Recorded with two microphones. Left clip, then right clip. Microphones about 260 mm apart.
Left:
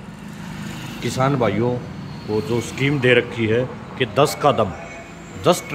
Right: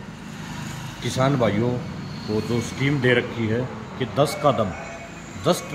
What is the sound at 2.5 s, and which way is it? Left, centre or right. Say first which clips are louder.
A man's voice: left 3 dB; centre.